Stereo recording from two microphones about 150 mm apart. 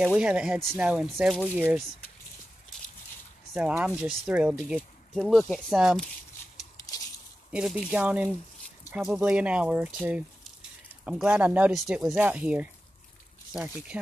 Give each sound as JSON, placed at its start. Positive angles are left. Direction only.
{"t": 0.0, "sound": "speech", "side_deg": -10}
{"t": 3.5, "sound": "speech", "side_deg": -5}
{"t": 7.5, "sound": "speech", "side_deg": -5}